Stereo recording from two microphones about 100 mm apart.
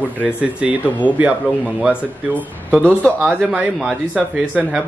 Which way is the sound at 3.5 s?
15° right (ahead or behind).